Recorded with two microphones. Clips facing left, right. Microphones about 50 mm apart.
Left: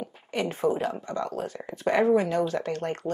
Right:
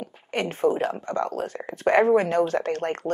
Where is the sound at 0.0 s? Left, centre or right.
Right.